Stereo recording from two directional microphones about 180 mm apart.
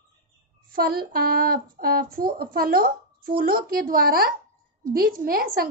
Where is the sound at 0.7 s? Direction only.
55° right (ahead or behind).